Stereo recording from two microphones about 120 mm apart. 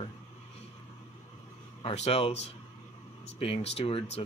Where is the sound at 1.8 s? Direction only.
60° left (ahead or behind).